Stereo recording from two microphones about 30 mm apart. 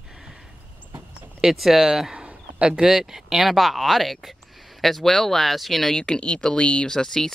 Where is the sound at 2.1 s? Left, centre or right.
Right.